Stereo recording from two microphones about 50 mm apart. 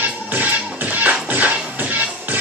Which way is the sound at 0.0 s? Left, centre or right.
Right.